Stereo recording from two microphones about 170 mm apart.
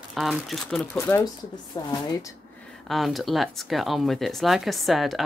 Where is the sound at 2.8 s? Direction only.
Centre (ahead or behind).